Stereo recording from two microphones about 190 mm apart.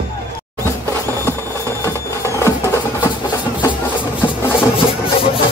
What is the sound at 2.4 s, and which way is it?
Music, 15° left (ahead or behind).